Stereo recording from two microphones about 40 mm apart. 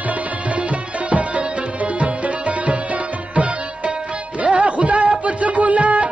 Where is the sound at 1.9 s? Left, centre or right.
Right.